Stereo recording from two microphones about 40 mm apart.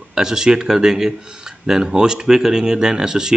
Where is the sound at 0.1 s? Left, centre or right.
Centre.